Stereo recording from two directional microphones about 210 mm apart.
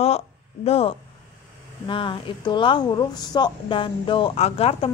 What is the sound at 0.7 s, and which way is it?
Speech, 30° left (ahead or behind).